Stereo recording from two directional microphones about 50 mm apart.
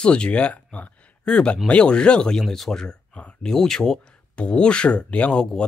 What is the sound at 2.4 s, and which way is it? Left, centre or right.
Speech, centre.